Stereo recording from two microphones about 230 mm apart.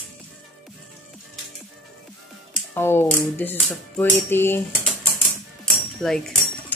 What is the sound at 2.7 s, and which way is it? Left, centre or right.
Music, centre.